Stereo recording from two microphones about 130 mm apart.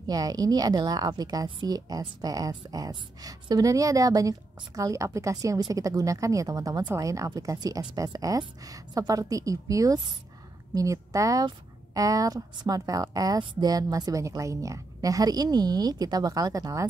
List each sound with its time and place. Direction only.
0.0 s a woman's voice: 30° right (ahead or behind)